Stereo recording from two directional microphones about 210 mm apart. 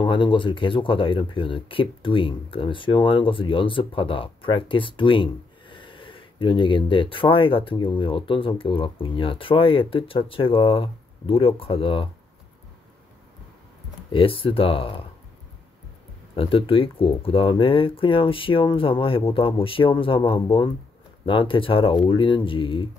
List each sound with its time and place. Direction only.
0.0 s speech: 25° left (ahead or behind)
14.1 s speech: 25° left (ahead or behind)
16.3 s speech: 25° left (ahead or behind)